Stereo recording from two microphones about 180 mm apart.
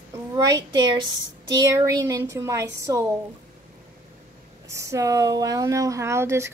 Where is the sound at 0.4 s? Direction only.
20° right (ahead or behind).